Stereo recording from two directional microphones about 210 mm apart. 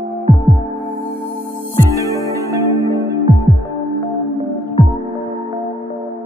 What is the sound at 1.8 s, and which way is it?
Music, 15° right (ahead or behind).